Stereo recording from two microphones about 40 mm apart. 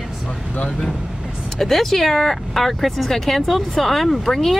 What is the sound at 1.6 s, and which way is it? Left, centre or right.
Speech, centre.